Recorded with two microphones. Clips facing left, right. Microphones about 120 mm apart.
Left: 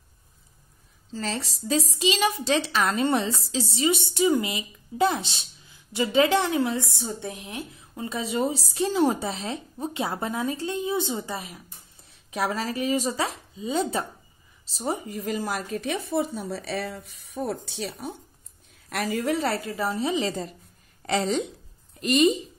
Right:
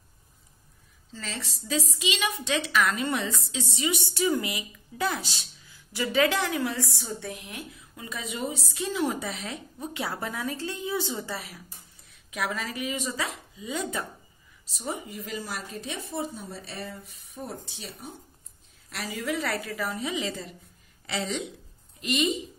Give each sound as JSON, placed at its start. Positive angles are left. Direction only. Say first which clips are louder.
{"t": 1.1, "sound": "a woman's voice", "louder": "left 7 dB", "side_deg": 40}
{"t": 12.1, "sound": "a woman's voice", "louder": "left 4 dB", "side_deg": 35}
{"t": 18.9, "sound": "a woman's voice", "louder": "left 6 dB", "side_deg": 50}
{"t": 19.3, "sound": "a woman's voice", "louder": "left 4 dB", "side_deg": 30}